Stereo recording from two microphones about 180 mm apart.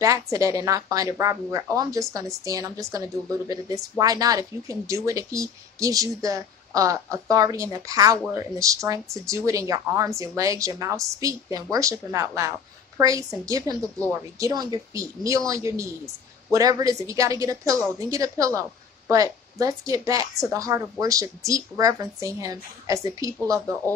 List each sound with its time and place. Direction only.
0.0 s speech: 20° right (ahead or behind)